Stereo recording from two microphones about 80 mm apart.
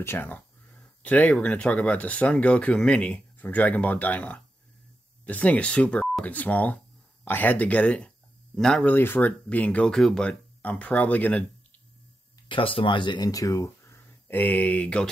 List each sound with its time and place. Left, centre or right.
0.0 s speech: left; by 8.8 s centre
8.8 s speech: left; by 10.3 s centre
10.6 s speech: centre
12.4 s speech: left
13.3 s speech: left
14.2 s speech: left